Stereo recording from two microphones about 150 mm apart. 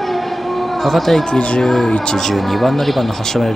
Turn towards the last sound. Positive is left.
turn(degrees=0)  # may be behind; listen again after turning